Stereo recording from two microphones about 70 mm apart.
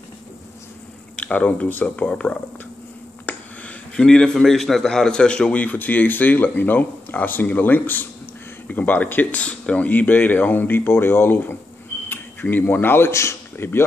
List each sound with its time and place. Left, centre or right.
1.1 s a man's voice: left
3.3 s a sound: left
3.9 s a man's voice: centre; by 13.7 s left